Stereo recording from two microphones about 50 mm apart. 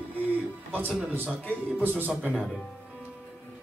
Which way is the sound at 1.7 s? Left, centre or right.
Right.